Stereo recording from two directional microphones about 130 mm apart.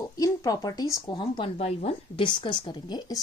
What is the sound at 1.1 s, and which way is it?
Speech, 35° left (ahead or behind).